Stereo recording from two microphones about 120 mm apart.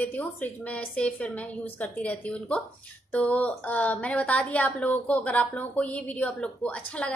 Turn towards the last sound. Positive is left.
turn(degrees=10)  # may be behind; listen again after turning